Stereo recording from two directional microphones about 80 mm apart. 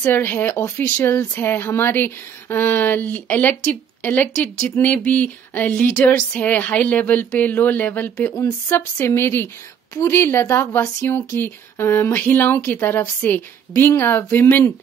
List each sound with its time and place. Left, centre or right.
0.0 s speech: left